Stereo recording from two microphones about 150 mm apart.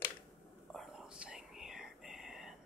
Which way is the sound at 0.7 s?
5° right (ahead or behind).